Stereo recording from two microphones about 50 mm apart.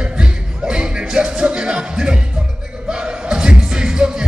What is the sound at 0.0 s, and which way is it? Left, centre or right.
Music, right.